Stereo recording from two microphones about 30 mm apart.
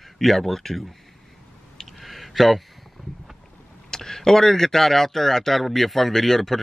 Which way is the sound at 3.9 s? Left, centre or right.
Centre.